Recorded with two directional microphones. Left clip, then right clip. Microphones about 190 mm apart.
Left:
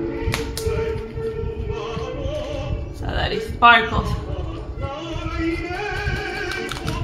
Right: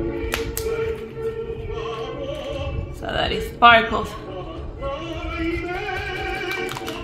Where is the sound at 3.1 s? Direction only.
60° right (ahead or behind).